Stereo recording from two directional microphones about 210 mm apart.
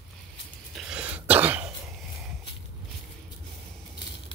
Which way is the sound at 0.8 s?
5° right (ahead or behind).